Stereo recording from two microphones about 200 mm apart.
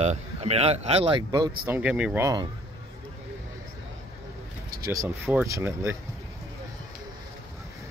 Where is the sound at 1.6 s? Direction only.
10° right (ahead or behind).